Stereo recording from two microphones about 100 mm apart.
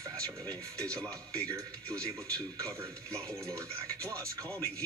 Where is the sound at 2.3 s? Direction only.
35° right (ahead or behind).